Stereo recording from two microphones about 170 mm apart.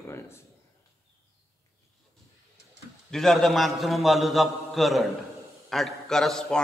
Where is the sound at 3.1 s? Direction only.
Centre (ahead or behind).